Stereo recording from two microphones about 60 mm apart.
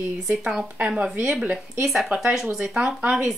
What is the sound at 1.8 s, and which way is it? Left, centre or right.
A woman's voice, centre.